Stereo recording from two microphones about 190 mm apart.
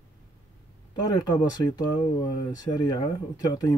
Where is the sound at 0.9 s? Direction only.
20° left (ahead or behind).